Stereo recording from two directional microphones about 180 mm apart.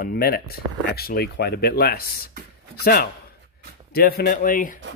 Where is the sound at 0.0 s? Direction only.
55° left (ahead or behind).